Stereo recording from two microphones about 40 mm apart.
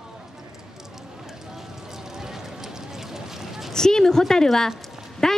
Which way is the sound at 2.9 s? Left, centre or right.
Centre.